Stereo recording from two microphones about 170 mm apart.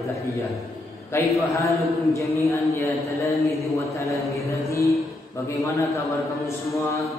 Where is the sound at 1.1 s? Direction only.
15° left (ahead or behind).